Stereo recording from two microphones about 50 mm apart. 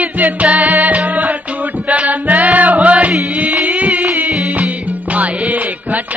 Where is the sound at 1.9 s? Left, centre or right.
Right.